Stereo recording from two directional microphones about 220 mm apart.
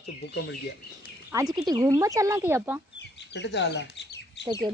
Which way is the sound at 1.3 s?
15° right (ahead or behind).